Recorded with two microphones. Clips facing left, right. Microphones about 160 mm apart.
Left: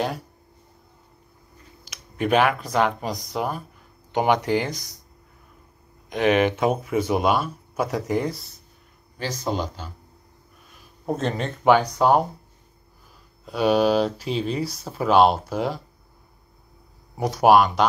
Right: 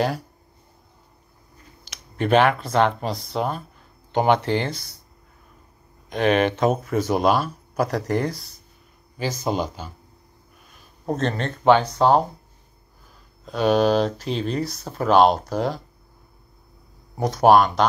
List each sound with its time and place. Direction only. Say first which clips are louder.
1.9 s speech: right 2 dB; 10° left (ahead or behind)
6.0 s speech: even; 15° left (ahead or behind)
9.4 s speech: right 1 dB; 15° right (ahead or behind)
11.1 s speech: right 1 dB; 5° left (ahead or behind)
13.5 s speech: right 1 dB; 10° left (ahead or behind)
17.2 s speech: right 1 dB; 10° left (ahead or behind)